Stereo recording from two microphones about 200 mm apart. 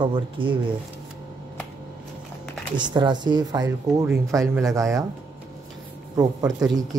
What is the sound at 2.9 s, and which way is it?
Speech, 20° right (ahead or behind).